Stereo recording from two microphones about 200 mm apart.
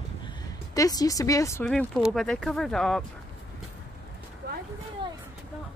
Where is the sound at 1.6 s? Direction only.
Centre (ahead or behind).